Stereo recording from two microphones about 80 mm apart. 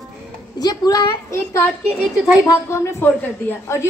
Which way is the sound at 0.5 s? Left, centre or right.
Left.